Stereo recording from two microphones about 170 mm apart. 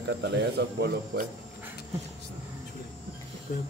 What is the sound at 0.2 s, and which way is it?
Speech, 80° right.